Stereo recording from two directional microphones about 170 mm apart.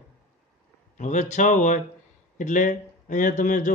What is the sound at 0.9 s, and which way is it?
A man's voice, 45° left (ahead or behind).